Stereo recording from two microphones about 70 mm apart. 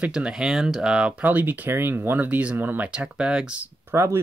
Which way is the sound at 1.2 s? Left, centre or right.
Right.